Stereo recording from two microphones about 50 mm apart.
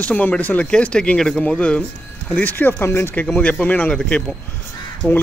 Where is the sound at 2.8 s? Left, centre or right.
Left.